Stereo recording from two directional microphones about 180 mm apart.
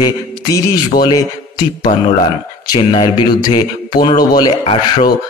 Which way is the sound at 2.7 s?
35° left (ahead or behind).